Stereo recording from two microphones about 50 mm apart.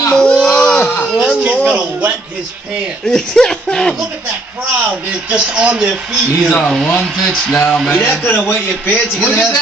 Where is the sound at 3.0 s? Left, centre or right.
Centre.